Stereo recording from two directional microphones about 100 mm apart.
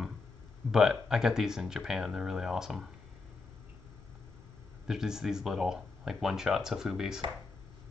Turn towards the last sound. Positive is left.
turn(degrees=-5)  # may be behind; listen again after turning